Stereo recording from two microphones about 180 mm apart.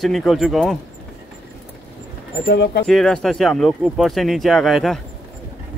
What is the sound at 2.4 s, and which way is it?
Speech, 65° left (ahead or behind).